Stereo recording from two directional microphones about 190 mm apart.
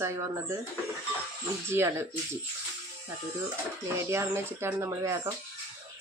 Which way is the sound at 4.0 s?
15° right (ahead or behind).